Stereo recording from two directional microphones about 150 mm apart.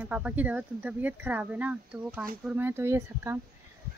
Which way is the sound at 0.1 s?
10° right (ahead or behind).